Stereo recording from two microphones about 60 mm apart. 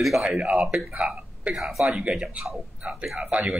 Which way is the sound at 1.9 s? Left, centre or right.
Centre.